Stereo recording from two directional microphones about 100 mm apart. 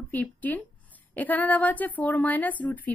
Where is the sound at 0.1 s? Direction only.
15° left (ahead or behind).